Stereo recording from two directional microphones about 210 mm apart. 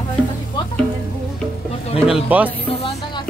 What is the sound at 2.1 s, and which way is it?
Speech, 10° right (ahead or behind).